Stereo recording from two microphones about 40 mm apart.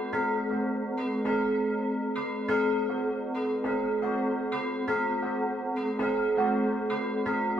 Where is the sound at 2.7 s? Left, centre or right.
Left.